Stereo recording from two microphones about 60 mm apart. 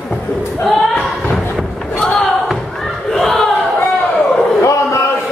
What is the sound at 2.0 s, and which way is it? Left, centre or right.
Battle cry, centre.